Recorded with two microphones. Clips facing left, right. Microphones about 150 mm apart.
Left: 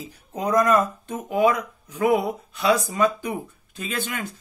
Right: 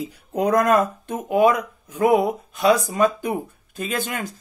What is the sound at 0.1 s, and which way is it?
Speech, 65° right (ahead or behind).